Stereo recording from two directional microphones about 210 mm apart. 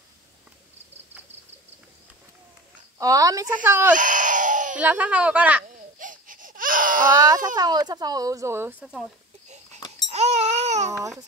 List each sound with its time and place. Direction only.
3.0 s speech: 15° right (ahead or behind)
3.9 s a sound: 40° right (ahead or behind)
4.7 s speech: 5° right (ahead or behind)
5.9 s baby cry: 40° right (ahead or behind)
7.1 s speech: 20° right (ahead or behind)
9.8 s a sound: 20° left (ahead or behind)
10.0 s baby cry: 30° right (ahead or behind)
10.9 s speech: 15° right (ahead or behind)